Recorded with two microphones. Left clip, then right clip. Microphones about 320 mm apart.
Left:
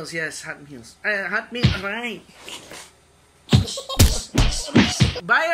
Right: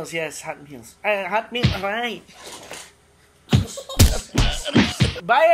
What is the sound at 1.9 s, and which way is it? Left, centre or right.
Speech, centre.